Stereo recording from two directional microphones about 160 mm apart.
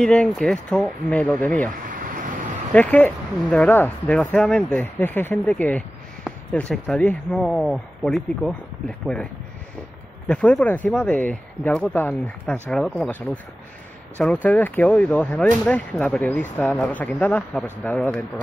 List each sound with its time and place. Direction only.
0.0 s speech: 5° left (ahead or behind)
1.9 s a sound: 55° right (ahead or behind)
2.7 s speech: 10° left (ahead or behind)